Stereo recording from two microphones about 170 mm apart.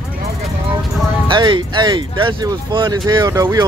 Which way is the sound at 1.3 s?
30° right (ahead or behind).